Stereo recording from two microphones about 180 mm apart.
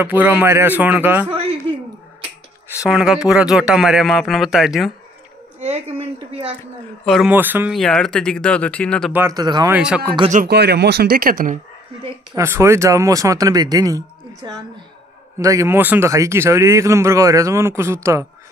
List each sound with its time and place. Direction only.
0.0 s speech: 10° right (ahead or behind)
1.3 s a sound: 30° right (ahead or behind)
2.8 s speech: centre (ahead or behind)
5.7 s a woman's voice: 35° right (ahead or behind)
7.2 s speech: 10° right (ahead or behind)
7.7 s speech: 5° left (ahead or behind)
9.1 s speech: 15° right (ahead or behind)
9.7 s speech: 5° right (ahead or behind)
10.3 s speech: 60° right (ahead or behind)
12.4 s speech: 15° right (ahead or behind)